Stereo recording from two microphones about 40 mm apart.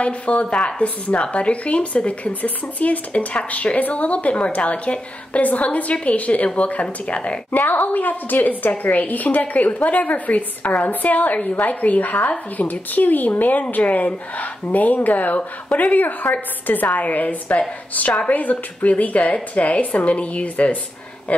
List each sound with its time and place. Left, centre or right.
0.0 s speech: left
7.5 s speech: left